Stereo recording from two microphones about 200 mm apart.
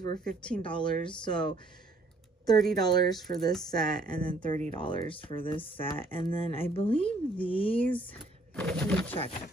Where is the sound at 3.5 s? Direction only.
Centre (ahead or behind).